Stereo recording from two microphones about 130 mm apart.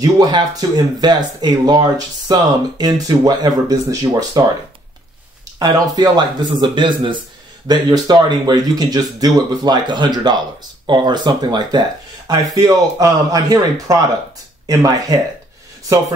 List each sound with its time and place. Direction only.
0.0 s speech: 30° right (ahead or behind)
5.6 s speech: 35° right (ahead or behind)